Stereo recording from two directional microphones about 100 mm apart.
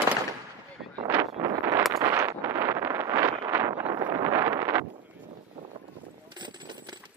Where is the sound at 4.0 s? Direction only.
45° right (ahead or behind).